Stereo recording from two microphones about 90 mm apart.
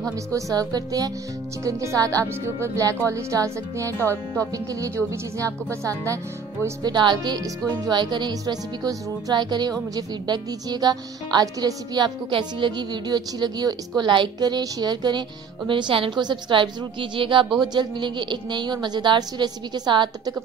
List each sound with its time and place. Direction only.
0.0 s speech: 40° right (ahead or behind)
6.8 s speech: 55° right (ahead or behind)
12.3 s a woman's voice: 65° right (ahead or behind)
16.2 s a woman's voice: 55° right (ahead or behind)